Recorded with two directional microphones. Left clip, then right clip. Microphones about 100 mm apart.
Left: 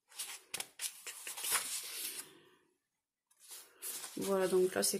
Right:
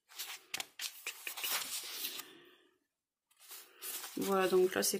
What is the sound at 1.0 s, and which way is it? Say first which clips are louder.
Shuffle: right 4 dB; 30° right (ahead or behind).